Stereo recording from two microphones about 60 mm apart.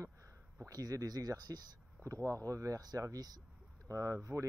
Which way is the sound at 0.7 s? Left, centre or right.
Right.